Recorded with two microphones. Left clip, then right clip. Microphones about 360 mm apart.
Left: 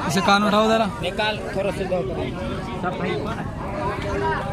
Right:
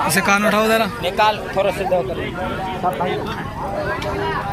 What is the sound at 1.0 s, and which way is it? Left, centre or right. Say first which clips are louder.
Speech: right 7 dB; centre.